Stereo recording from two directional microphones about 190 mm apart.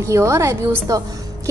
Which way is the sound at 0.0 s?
15° right (ahead or behind).